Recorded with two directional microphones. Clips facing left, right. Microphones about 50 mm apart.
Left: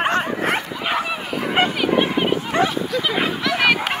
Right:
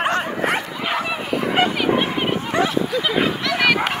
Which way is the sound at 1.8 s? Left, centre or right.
Centre.